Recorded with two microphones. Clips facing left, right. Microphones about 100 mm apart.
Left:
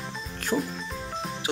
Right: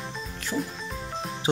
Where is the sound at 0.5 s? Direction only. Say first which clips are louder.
Left 3 dB; 40° left (ahead or behind).